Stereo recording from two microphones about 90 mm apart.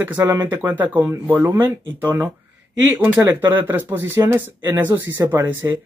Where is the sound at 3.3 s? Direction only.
25° right (ahead or behind).